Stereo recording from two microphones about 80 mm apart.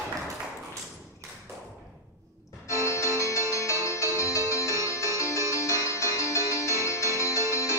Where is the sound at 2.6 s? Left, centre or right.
Left.